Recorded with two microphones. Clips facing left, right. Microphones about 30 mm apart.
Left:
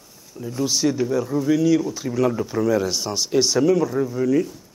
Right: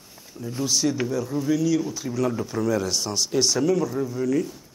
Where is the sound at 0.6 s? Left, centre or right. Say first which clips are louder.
Left 3 dB; centre.